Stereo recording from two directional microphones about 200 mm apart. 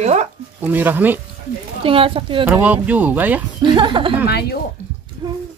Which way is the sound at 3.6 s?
25° right (ahead or behind).